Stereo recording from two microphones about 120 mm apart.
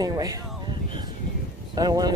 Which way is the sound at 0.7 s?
40° right (ahead or behind).